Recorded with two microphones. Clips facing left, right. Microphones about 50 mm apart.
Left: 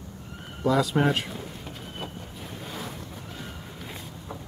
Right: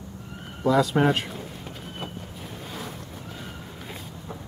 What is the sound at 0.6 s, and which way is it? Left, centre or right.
Speech, centre.